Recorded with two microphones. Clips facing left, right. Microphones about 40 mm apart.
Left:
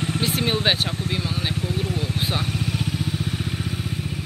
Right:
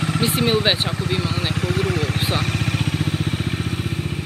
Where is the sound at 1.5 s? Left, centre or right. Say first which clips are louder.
Right 4 dB; right.